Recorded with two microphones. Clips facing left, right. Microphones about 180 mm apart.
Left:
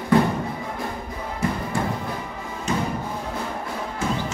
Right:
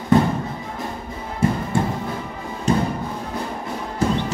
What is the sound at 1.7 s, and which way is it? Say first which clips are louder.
Music: right 4 dB; 25° right (ahead or behind).